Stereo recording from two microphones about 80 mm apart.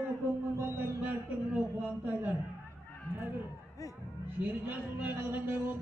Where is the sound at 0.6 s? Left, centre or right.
Right.